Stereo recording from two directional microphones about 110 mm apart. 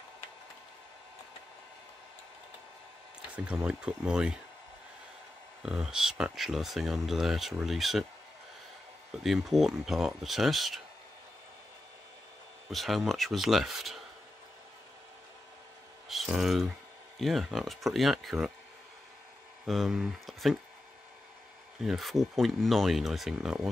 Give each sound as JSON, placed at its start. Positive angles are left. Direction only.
{"t": 3.4, "sound": "speech", "side_deg": -10}
{"t": 5.6, "sound": "speech", "side_deg": -5}
{"t": 9.2, "sound": "speech", "side_deg": 0}
{"t": 12.6, "sound": "speech", "side_deg": 0}
{"t": 16.1, "sound": "speech", "side_deg": 0}
{"t": 19.6, "sound": "speech", "side_deg": 0}
{"t": 21.8, "sound": "speech", "side_deg": 0}